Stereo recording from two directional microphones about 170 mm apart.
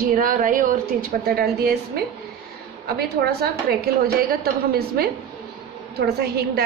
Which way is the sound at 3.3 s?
70° right (ahead or behind).